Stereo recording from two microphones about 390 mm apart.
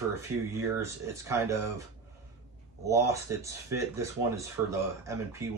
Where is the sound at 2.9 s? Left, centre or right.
Centre.